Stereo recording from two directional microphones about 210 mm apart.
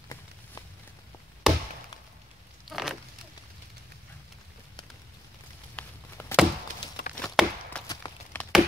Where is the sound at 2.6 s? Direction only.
Centre (ahead or behind).